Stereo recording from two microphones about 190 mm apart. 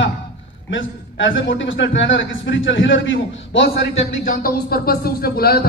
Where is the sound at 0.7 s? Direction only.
80° left.